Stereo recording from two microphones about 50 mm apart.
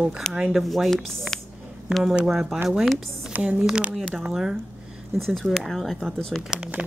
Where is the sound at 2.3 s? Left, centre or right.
Centre.